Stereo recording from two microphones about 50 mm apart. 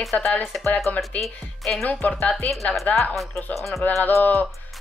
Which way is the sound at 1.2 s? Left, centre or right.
Centre.